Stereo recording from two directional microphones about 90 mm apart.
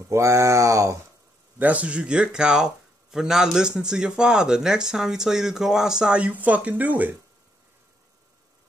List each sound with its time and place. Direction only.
0.1 s speech: 35° right (ahead or behind)
1.6 s speech: 15° right (ahead or behind)